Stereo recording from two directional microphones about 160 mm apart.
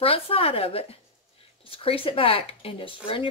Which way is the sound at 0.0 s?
35° left (ahead or behind).